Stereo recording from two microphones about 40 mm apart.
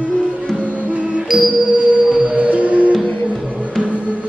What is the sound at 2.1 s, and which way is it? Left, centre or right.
Music, right.